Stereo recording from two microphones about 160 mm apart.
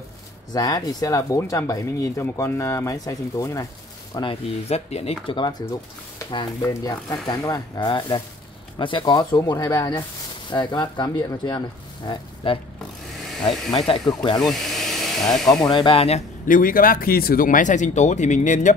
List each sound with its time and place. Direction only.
0.5 s speech: 25° left (ahead or behind)
4.2 s speech: 35° left (ahead or behind)
5.2 s speech: 30° left (ahead or behind)
6.1 s speech: 20° left (ahead or behind)
13.7 s speech: 25° left (ahead or behind)
14.4 s a sound: centre (ahead or behind)
15.6 s speech: 30° left (ahead or behind)
16.4 s speech: 60° left (ahead or behind)